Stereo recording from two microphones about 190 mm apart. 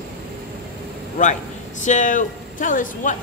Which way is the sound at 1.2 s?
40° left (ahead or behind).